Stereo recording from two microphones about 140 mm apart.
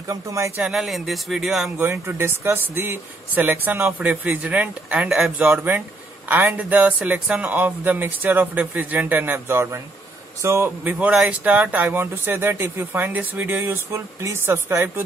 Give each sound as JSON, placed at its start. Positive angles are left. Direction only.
{"t": 0.1, "sound": "speech", "side_deg": -20}
{"t": 0.6, "sound": "speech", "side_deg": -5}
{"t": 1.8, "sound": "speech", "side_deg": -15}